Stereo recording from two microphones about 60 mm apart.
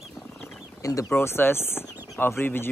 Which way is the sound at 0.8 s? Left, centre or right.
Left.